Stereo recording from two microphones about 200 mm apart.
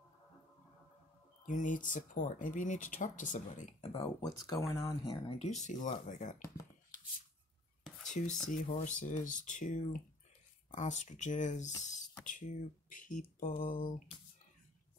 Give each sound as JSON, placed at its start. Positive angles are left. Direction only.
{"t": 1.4, "sound": "speech", "side_deg": 40}
{"t": 4.2, "sound": "speech", "side_deg": 15}
{"t": 5.4, "sound": "speech", "side_deg": 35}
{"t": 8.1, "sound": "speech", "side_deg": 40}